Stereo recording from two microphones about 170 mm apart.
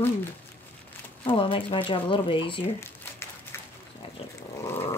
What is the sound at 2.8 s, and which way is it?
Crumpling, 15° left (ahead or behind).